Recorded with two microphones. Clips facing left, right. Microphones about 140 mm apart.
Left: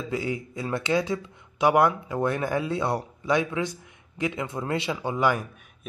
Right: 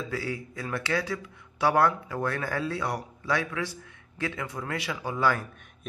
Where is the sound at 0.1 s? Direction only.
20° left (ahead or behind).